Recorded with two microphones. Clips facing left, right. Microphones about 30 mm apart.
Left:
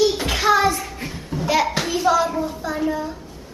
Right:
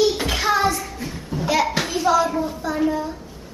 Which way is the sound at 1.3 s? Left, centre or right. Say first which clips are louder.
Left 1 dB; centre.